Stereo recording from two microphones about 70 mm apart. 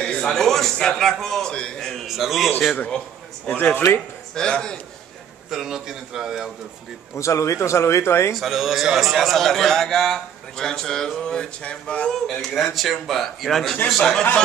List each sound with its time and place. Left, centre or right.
0.0 s a sound: centre
0.3 s a man's voice: centre
2.0 s a man's voice: centre
3.5 s a man's voice: left
5.5 s a man's voice: centre
7.2 s speech: left
8.4 s a man's voice: centre
12.1 s a man's voice: centre